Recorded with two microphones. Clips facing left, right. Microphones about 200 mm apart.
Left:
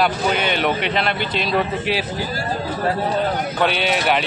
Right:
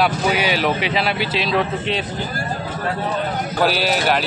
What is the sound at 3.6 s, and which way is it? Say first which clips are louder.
Speech: right 1 dB; centre (ahead or behind).